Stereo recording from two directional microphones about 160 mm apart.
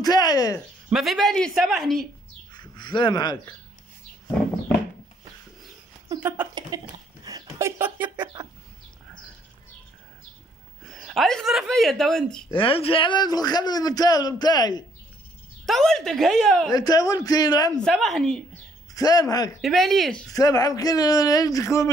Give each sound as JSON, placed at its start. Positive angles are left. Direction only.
{"t": 0.0, "sound": "a man's voice", "side_deg": 25}
{"t": 0.8, "sound": "speech", "side_deg": -5}
{"t": 2.8, "sound": "a man's voice", "side_deg": 30}
{"t": 6.2, "sound": "a sound", "side_deg": -10}
{"t": 6.7, "sound": "speech", "side_deg": -20}
{"t": 10.9, "sound": "speech", "side_deg": 0}
{"t": 12.5, "sound": "a man's voice", "side_deg": 35}
{"t": 15.6, "sound": "speech", "side_deg": 0}
{"t": 16.7, "sound": "a man's voice", "side_deg": 25}
{"t": 17.7, "sound": "speech", "side_deg": 5}
{"t": 18.9, "sound": "a man's voice", "side_deg": 25}
{"t": 19.6, "sound": "speech", "side_deg": 0}
{"t": 20.2, "sound": "a man's voice", "side_deg": 25}